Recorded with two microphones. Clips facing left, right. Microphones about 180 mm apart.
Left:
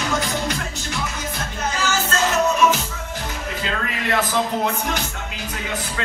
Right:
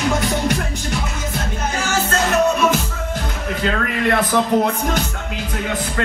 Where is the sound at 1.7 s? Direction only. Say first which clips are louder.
Right 3 dB; 60° right (ahead or behind).